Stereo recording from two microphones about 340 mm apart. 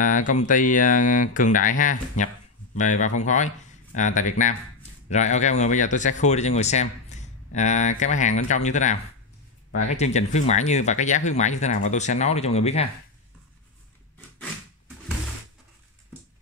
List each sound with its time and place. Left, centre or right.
0.0 s speech: left